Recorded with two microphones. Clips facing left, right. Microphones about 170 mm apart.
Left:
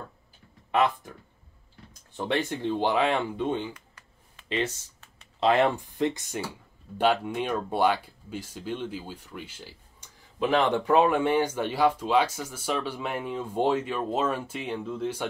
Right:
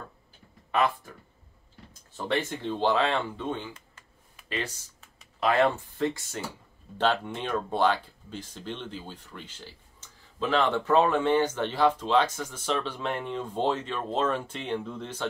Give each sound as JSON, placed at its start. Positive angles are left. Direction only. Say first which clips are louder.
{"t": 0.7, "sound": "speech", "louder": "left 2 dB", "side_deg": 20}
{"t": 2.1, "sound": "speech", "louder": "left 1 dB", "side_deg": 15}